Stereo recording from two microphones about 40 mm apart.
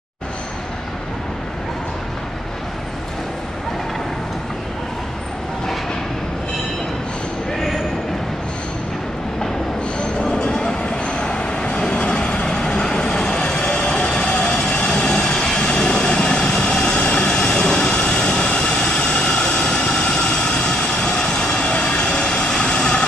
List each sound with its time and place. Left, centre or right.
10.3 s vehicle: centre
17.3 s vehicle: centre